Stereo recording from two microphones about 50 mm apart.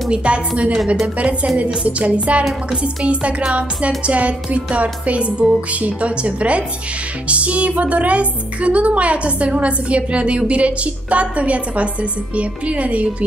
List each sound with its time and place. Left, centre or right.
0.1 s speech: right